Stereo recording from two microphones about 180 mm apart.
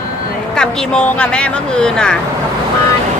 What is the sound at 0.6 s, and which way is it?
Speech, 5° left (ahead or behind).